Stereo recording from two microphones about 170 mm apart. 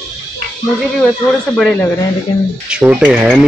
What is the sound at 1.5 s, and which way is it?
Speech, 5° left (ahead or behind).